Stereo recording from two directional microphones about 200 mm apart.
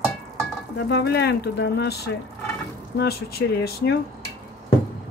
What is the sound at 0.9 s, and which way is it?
Speech, 55° left (ahead or behind).